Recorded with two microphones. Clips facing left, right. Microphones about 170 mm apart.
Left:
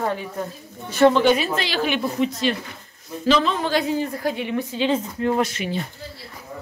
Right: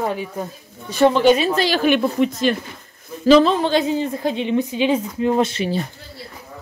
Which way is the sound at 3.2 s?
35° right (ahead or behind).